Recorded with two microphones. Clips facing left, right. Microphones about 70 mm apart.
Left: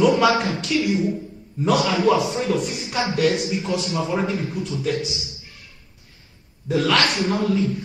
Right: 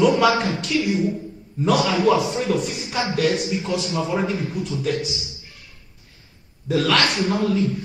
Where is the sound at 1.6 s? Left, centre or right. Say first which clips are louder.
Even; centre.